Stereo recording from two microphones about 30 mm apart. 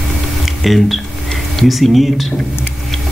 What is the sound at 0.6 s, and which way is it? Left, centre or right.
Speech, centre.